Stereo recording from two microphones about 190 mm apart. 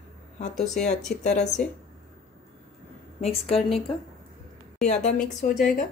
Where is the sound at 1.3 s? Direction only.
5° left (ahead or behind).